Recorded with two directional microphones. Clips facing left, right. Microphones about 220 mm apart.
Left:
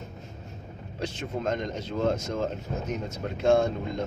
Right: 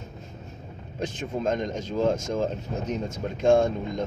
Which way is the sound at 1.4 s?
15° right (ahead or behind).